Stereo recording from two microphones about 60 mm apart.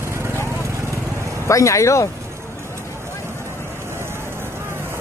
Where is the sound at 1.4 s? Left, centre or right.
Left.